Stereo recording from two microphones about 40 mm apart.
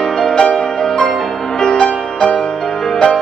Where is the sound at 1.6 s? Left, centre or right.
Centre.